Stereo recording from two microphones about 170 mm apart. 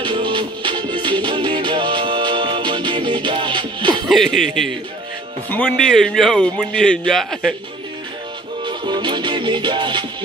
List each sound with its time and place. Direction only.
0.0 s music: 30° right (ahead or behind)
4.1 s a man's voice: centre (ahead or behind)
8.6 s music: 25° right (ahead or behind)